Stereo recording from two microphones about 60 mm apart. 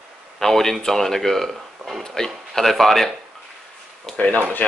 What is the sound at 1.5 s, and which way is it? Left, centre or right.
Speech, centre.